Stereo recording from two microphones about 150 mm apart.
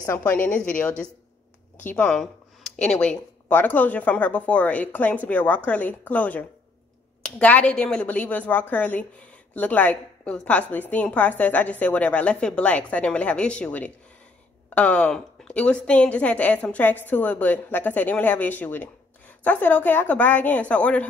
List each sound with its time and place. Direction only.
0.0 s a woman's voice: 15° left (ahead or behind)